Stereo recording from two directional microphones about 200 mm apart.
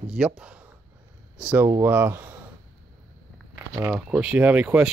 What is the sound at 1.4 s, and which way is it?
Speech, 5° right (ahead or behind).